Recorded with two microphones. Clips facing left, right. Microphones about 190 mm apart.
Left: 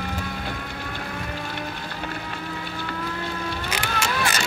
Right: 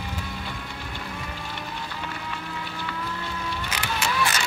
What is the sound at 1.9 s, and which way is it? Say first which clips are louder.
Music: left 2 dB; 45° left (ahead or behind).